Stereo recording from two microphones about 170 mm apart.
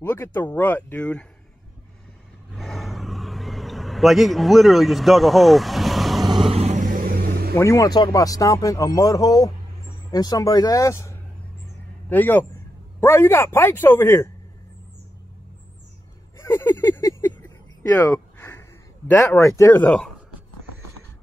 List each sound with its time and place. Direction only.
0.0 s a man's voice: 15° left (ahead or behind)
2.5 s vehicle: centre (ahead or behind)
6.2 s vehicle: 30° right (ahead or behind); by 7.5 s 60° right (ahead or behind)
7.5 s a man's voice: 20° left (ahead or behind)
16.3 s a sound: 15° left (ahead or behind)
18.5 s speech: 10° left (ahead or behind)